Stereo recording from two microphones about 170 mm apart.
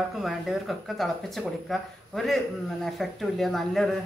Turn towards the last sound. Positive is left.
turn(degrees=0)  # may be behind; listen again after turning